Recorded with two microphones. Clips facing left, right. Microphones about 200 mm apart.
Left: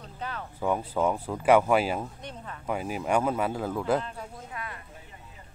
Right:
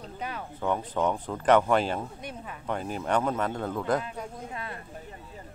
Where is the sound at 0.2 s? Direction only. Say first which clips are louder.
Even; 10° right (ahead or behind).